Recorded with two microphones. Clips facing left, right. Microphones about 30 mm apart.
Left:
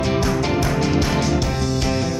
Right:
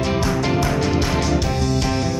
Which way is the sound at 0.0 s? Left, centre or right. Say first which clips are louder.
Even; centre.